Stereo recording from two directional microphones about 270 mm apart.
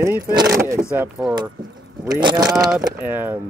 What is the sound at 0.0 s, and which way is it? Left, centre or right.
Speech, centre.